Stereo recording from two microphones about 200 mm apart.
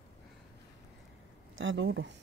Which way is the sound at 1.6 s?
65° right (ahead or behind).